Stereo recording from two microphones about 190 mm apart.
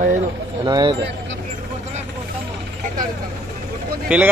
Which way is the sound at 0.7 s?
20° right (ahead or behind).